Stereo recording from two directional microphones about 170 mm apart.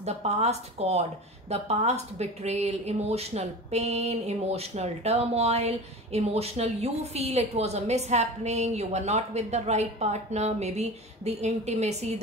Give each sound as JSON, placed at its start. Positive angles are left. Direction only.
{"t": 0.0, "sound": "speech", "side_deg": -40}